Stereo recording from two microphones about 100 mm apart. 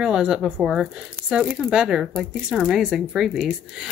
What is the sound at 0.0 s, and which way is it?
Speech, 10° right (ahead or behind).